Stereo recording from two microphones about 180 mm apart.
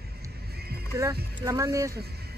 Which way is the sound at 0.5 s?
60° right (ahead or behind).